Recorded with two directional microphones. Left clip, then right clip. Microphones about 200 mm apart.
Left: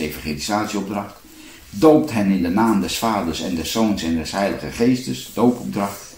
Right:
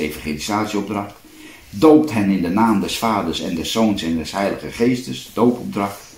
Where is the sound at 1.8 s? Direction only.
25° right (ahead or behind).